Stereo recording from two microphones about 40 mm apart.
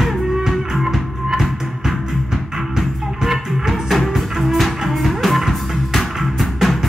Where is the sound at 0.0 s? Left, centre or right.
Centre.